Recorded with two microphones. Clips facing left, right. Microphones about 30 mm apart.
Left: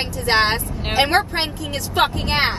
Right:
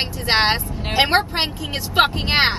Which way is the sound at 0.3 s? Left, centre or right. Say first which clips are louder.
Even; right.